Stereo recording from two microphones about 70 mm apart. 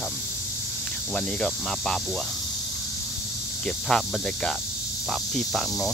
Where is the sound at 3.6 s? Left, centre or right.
Centre.